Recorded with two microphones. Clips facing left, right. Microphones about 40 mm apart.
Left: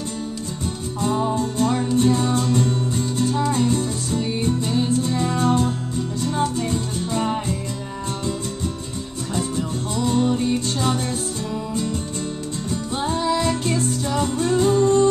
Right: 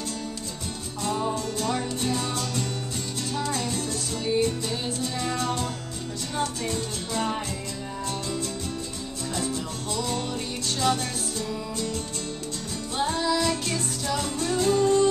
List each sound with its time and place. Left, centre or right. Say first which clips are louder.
1.3 s music: left 6 dB; left
9.4 s music: left 7 dB; left
12.9 s music: left 3 dB; left